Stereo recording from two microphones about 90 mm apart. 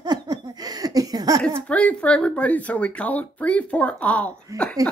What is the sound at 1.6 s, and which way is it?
Speech, 15° left (ahead or behind).